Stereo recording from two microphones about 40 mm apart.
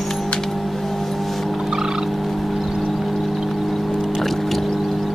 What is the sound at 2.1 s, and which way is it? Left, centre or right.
Frog, centre.